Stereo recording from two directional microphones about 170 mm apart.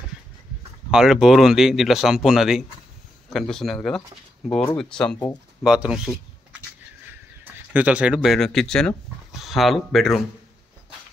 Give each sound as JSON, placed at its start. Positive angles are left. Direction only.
{"t": 0.9, "sound": "speech", "side_deg": 0}
{"t": 7.7, "sound": "speech", "side_deg": -10}